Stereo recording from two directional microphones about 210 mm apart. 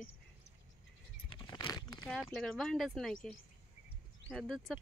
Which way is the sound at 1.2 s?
20° left (ahead or behind).